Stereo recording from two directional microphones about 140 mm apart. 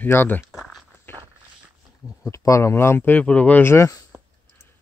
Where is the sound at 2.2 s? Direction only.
20° left (ahead or behind).